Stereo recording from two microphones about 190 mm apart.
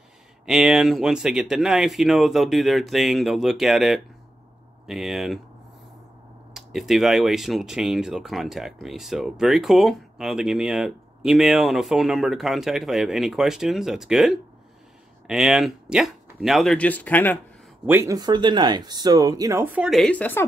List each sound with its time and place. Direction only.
0.5 s speech: centre (ahead or behind)
6.5 s speech: centre (ahead or behind)
17.8 s speech: 15° right (ahead or behind); by 20.4 s 10° left (ahead or behind)